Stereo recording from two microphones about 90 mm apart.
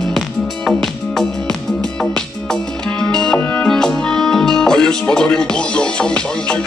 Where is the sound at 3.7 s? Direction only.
5° left (ahead or behind).